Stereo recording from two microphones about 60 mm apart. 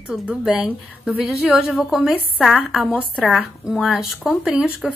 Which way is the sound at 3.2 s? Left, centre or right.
Centre.